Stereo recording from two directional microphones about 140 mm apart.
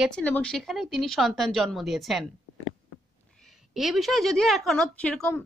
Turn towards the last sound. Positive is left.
turn(degrees=10)  # may be behind; listen again after turning